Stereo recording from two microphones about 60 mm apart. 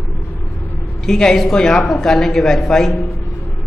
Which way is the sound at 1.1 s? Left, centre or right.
Centre.